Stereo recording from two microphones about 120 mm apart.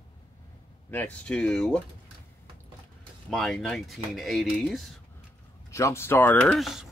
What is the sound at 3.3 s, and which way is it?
Speech, 5° left (ahead or behind).